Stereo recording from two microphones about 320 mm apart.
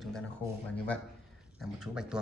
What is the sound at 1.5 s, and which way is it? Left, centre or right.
Speech, centre.